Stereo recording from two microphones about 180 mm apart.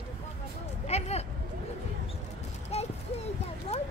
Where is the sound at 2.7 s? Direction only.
35° left (ahead or behind).